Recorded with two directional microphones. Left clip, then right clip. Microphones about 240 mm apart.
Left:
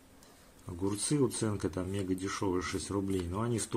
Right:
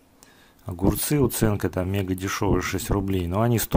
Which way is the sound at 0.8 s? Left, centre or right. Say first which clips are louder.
Right 8 dB; right.